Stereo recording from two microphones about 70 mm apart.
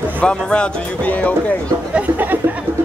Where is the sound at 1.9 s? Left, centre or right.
Right.